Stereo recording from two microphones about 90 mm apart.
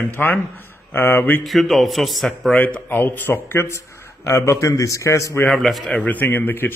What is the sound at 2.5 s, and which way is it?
Speech, 15° left (ahead or behind).